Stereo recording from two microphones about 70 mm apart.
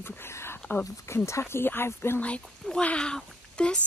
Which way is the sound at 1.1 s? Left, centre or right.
Left.